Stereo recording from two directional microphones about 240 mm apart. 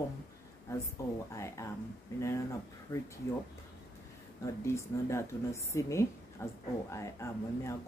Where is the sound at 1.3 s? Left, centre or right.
Centre.